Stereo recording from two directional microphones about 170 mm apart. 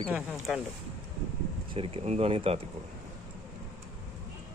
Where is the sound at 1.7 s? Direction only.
30° right (ahead or behind).